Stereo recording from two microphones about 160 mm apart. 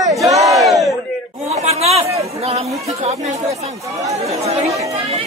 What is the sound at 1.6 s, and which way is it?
Chatter, 40° right (ahead or behind).